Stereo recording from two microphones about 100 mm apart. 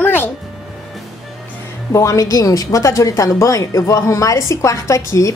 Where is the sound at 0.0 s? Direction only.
20° left (ahead or behind).